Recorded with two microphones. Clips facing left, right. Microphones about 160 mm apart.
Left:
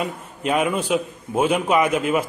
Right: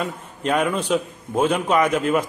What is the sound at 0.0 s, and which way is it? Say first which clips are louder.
A man's voice: even; 5° left (ahead or behind).